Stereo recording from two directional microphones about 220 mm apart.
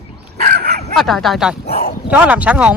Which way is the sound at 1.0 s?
Centre (ahead or behind).